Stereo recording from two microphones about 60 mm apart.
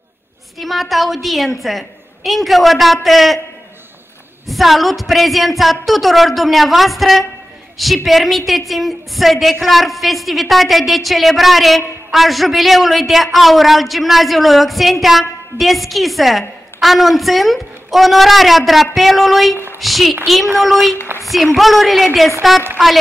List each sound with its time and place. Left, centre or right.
0.6 s a woman's voice: centre
4.5 s a woman's voice: centre
21.2 s a sound: centre
21.5 s a woman's voice: centre